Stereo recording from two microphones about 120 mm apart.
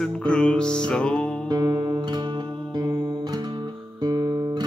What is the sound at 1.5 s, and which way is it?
Music, 30° right (ahead or behind).